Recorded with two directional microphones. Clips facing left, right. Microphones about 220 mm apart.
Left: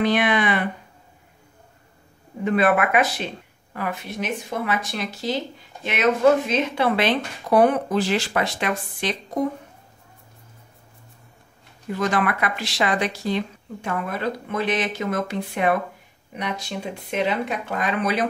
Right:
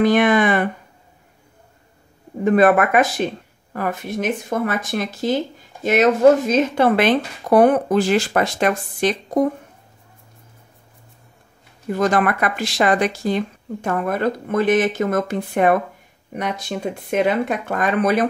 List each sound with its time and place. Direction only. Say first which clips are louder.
0.0 s speech: right 5 dB; 50° right (ahead or behind)
2.4 s speech: right 5 dB; 45° right (ahead or behind)
11.9 s speech: right 5 dB; 50° right (ahead or behind)